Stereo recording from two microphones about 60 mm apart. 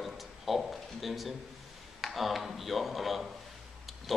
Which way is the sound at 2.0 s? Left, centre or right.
Centre.